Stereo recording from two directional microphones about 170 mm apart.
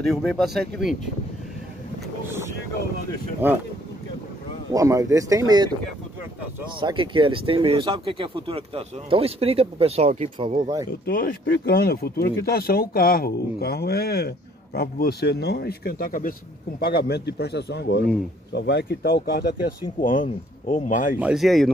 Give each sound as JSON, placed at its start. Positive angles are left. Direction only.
{"t": 0.1, "sound": "speech", "side_deg": 0}
{"t": 3.4, "sound": "speech", "side_deg": -10}
{"t": 4.7, "sound": "speech", "side_deg": -20}
{"t": 6.8, "sound": "speech", "side_deg": -30}
{"t": 10.9, "sound": "speech", "side_deg": 60}
{"t": 16.8, "sound": "speech", "side_deg": 70}
{"t": 18.5, "sound": "speech", "side_deg": 90}
{"t": 20.0, "sound": "speech", "side_deg": 50}
{"t": 21.2, "sound": "speech", "side_deg": -5}